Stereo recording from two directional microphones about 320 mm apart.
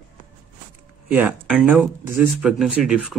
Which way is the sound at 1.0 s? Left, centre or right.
Centre.